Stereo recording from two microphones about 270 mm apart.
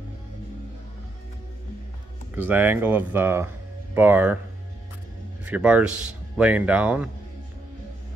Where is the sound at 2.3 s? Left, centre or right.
Centre.